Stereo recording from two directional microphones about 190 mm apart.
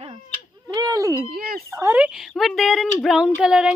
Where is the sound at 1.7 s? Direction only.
10° right (ahead or behind).